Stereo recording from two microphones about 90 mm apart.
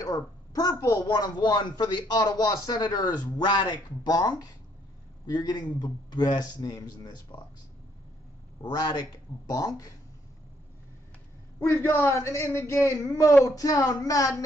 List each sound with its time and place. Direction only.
0.0 s a woman's voice: 40° left (ahead or behind)
1.0 s a man's voice: 50° left (ahead or behind)
8.5 s a man's voice: 50° left (ahead or behind)
11.6 s a man's voice: 30° left (ahead or behind)